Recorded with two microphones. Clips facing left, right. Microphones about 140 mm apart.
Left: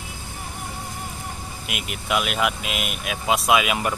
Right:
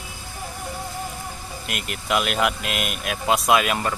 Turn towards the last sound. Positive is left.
turn(degrees=5)  # may be behind; listen again after turning